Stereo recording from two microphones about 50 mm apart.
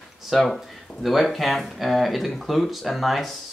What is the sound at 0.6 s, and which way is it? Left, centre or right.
Speech, centre.